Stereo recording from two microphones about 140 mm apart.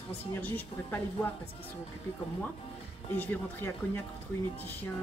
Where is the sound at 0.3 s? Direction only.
15° left (ahead or behind).